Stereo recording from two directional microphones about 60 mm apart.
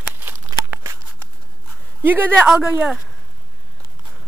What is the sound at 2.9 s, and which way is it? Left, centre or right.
Speech, centre.